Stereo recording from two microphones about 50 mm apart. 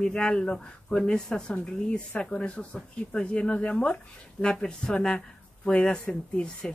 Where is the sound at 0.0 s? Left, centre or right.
Centre.